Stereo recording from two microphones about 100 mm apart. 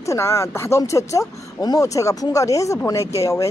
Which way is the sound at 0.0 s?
30° left (ahead or behind).